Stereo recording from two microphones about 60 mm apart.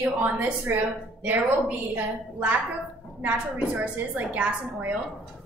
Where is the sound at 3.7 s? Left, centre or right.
Right.